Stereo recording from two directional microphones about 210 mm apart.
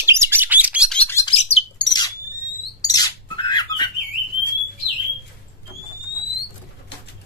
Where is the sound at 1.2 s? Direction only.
30° left (ahead or behind).